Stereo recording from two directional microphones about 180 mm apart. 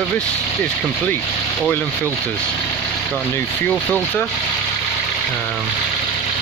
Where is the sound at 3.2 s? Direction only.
10° left (ahead or behind).